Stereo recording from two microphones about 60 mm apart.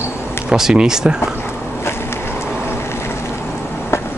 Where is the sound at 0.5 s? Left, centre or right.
Centre.